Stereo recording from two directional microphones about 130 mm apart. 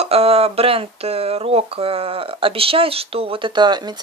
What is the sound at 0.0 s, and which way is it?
Speech, 50° right (ahead or behind).